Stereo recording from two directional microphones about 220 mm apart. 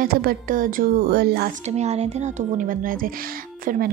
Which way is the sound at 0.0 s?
40° right (ahead or behind).